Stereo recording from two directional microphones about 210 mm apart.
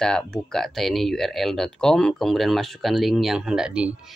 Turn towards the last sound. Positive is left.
turn(degrees=-5)  # may be behind; listen again after turning